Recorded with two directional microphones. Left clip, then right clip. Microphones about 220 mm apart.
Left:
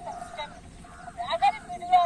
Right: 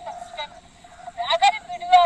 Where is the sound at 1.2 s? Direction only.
40° right (ahead or behind).